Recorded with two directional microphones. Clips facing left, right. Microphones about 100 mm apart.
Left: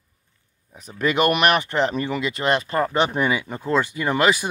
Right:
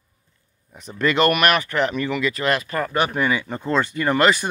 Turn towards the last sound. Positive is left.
turn(degrees=10)  # may be behind; listen again after turning